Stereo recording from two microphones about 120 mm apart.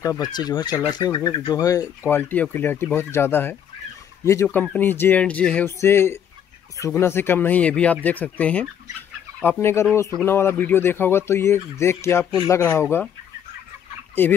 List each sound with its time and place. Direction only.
0.0 s speech: 30° left (ahead or behind); by 5.7 s 10° left (ahead or behind)
5.7 s speech: 20° left (ahead or behind)
12.3 s speech: 35° left (ahead or behind)
12.5 s speech: 20° left (ahead or behind)
14.2 s speech: 15° left (ahead or behind)